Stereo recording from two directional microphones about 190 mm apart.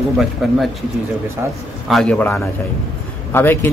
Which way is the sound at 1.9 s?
5° left (ahead or behind).